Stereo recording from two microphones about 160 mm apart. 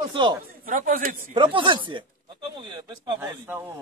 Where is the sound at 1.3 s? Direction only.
30° right (ahead or behind).